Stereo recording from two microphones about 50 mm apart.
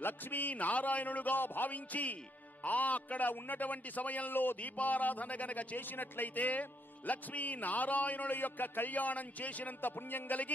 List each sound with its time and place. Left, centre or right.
0.0 s a man's voice: left
9.8 s a man's voice: left